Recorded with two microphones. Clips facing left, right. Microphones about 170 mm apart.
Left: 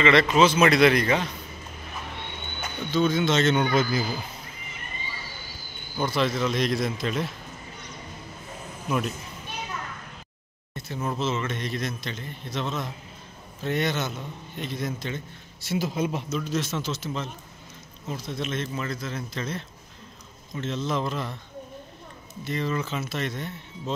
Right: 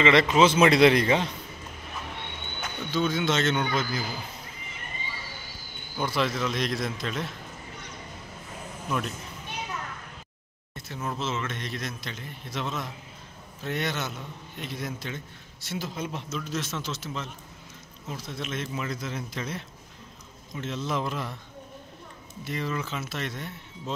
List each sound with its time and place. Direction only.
0.0 s a man's voice: 15° right (ahead or behind)
2.6 s a man's voice: 5° right (ahead or behind)
6.0 s a man's voice: 5° right (ahead or behind)
8.8 s a man's voice: 5° left (ahead or behind)
10.7 s a man's voice: centre (ahead or behind)
22.4 s a man's voice: 5° right (ahead or behind)